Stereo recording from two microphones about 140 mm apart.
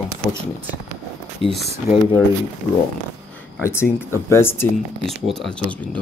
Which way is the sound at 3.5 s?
20° left (ahead or behind).